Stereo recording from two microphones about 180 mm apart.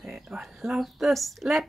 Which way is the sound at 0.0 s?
Centre (ahead or behind).